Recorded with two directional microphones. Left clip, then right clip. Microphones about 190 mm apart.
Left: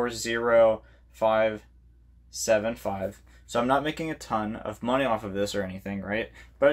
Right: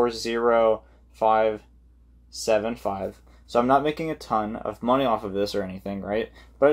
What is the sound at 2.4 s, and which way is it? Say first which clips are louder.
Speech: right 1 dB; 5° left (ahead or behind).